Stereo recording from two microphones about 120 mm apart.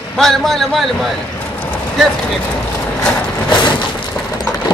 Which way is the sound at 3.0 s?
10° left (ahead or behind).